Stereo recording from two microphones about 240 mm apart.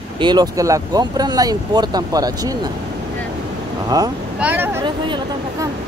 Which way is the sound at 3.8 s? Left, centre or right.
Centre.